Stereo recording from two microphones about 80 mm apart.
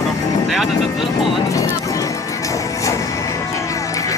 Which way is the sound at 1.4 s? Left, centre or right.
Left.